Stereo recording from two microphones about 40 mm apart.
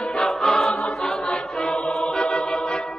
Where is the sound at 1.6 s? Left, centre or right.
Centre.